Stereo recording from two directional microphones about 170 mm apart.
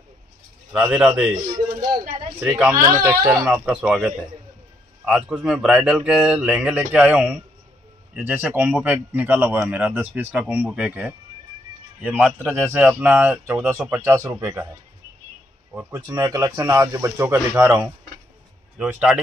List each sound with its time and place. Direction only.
0.7 s speech: 5° right (ahead or behind)
1.3 s a sound: 30° right (ahead or behind)
2.7 s speech: 20° right (ahead or behind)
15.7 s speech: 10° right (ahead or behind)